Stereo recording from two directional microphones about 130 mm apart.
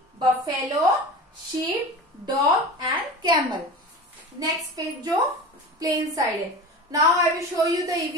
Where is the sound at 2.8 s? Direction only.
35° right (ahead or behind).